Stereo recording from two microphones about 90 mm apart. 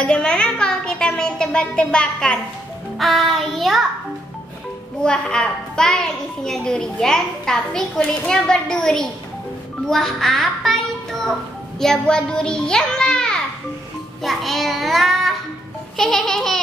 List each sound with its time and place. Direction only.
0.0 s a sound: 10° left (ahead or behind)
3.0 s child singing: centre (ahead or behind)
5.0 s a child's voice: 10° left (ahead or behind)
14.2 s child singing: centre (ahead or behind)